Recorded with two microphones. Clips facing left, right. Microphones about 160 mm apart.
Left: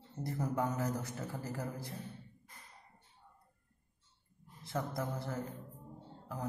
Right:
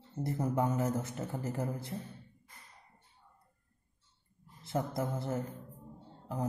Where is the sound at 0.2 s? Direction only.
20° right (ahead or behind).